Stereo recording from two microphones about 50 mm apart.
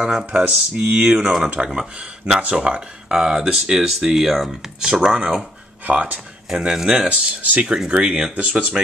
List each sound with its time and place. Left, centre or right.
0.0 s speech: centre
0.3 s speech: right
1.1 s speech: centre
5.9 s speech: right
6.6 s speech: centre
7.1 s speech: right